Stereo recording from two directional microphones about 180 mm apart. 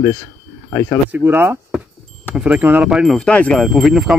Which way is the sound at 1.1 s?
10° right (ahead or behind).